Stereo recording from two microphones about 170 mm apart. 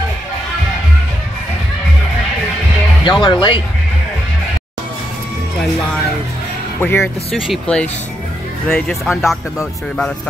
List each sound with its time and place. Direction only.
3.1 s speech: 30° left (ahead or behind)
6.8 s speech: 15° left (ahead or behind)
7.4 s speech: centre (ahead or behind)